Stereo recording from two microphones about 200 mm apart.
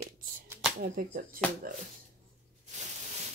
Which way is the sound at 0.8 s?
45° right (ahead or behind).